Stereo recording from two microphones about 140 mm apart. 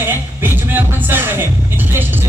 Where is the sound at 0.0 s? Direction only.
15° right (ahead or behind).